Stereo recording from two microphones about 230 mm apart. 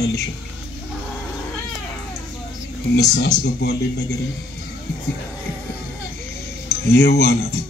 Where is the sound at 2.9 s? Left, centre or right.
Left.